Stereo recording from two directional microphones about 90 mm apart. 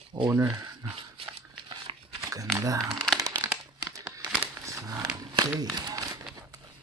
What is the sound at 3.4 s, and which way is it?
Crumpling, 35° right (ahead or behind).